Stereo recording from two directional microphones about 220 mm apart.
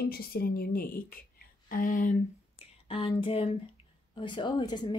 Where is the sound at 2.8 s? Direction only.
25° left (ahead or behind).